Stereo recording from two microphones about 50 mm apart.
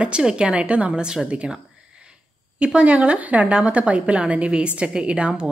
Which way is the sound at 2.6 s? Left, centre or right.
Right.